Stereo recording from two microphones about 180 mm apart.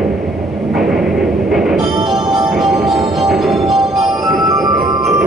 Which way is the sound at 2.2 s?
25° right (ahead or behind).